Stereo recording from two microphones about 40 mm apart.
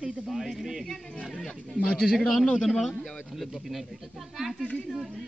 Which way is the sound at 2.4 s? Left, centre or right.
Centre.